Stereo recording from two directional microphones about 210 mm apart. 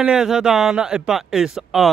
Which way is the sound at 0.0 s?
5° right (ahead or behind).